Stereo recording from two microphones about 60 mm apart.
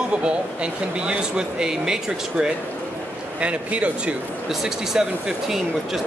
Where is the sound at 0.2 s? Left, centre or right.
Centre.